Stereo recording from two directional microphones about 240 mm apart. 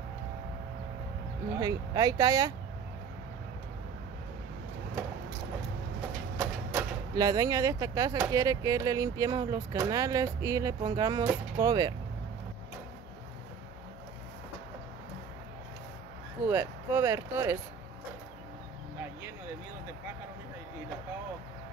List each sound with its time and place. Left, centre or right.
1.6 s speech: centre
6.3 s speech: centre
16.4 s speech: centre